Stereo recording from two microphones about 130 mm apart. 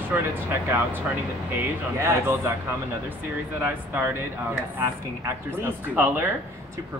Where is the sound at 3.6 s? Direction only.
15° right (ahead or behind).